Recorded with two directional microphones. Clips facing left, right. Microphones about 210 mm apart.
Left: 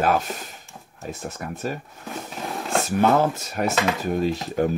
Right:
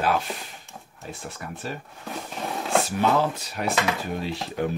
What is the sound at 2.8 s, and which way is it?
Speech, 50° left (ahead or behind).